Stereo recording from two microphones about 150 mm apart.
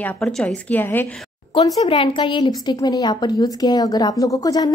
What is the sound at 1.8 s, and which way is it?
A woman's voice, 35° left (ahead or behind).